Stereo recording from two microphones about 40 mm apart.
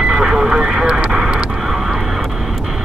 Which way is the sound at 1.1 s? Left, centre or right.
Right.